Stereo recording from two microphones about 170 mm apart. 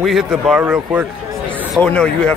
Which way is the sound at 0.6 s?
10° right (ahead or behind).